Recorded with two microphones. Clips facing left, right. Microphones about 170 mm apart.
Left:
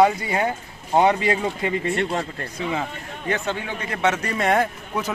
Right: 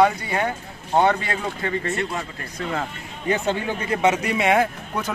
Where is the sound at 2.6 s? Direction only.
5° left (ahead or behind).